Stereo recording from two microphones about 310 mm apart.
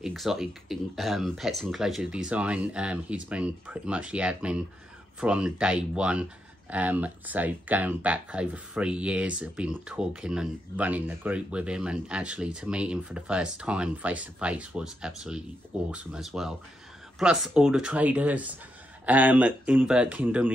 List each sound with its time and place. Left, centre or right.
0.0 s speech: centre